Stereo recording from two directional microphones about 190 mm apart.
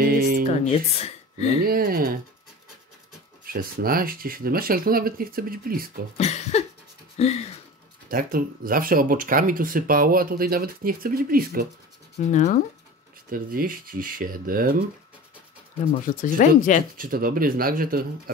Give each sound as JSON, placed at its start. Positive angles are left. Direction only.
{"t": 0.0, "sound": "music", "side_deg": -50}
{"t": 0.7, "sound": "speech", "side_deg": 35}
{"t": 1.7, "sound": "speech", "side_deg": -50}
{"t": 3.4, "sound": "speech", "side_deg": -50}
{"t": 6.1, "sound": "cough", "side_deg": 35}
{"t": 7.2, "sound": "speech", "side_deg": 35}
{"t": 8.1, "sound": "speech", "side_deg": -50}
{"t": 12.3, "sound": "speech", "side_deg": 40}
{"t": 13.3, "sound": "speech", "side_deg": -50}
{"t": 16.2, "sound": "speech", "side_deg": 40}
{"t": 16.9, "sound": "speech", "side_deg": -50}